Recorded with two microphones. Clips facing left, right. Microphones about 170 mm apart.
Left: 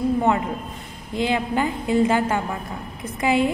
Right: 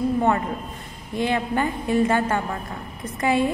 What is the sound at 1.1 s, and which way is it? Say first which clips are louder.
A woman's voice: left 1 dB; 15° left (ahead or behind).